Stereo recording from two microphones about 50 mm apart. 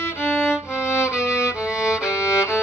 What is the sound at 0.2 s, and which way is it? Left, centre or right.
Music, left.